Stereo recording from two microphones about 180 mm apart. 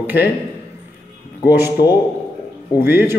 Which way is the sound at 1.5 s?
10° right (ahead or behind).